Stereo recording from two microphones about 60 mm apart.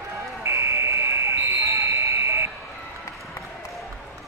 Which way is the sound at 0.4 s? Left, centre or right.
Right.